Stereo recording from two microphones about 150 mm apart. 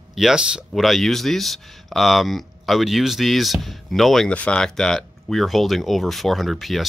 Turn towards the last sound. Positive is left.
turn(degrees=0)  # may be behind; listen again after turning